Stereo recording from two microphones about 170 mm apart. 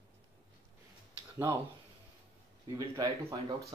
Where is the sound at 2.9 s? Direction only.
20° right (ahead or behind).